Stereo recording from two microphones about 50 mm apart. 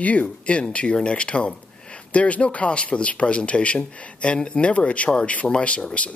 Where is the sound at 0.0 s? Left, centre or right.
Left.